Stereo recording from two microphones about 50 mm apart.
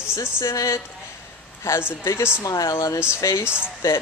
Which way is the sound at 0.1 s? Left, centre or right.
Left.